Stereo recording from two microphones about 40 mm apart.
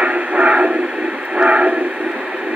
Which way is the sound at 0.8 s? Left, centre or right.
Right.